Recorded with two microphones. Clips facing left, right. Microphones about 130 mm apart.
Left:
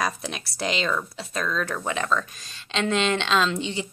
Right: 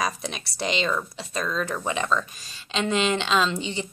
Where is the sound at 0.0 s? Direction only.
Centre (ahead or behind).